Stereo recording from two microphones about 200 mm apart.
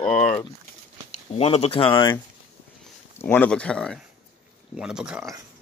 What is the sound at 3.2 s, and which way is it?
Speech, 10° left (ahead or behind).